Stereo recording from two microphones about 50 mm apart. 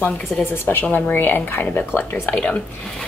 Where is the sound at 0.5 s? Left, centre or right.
Left.